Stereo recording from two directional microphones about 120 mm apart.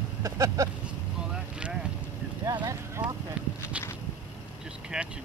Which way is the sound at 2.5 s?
35° right (ahead or behind).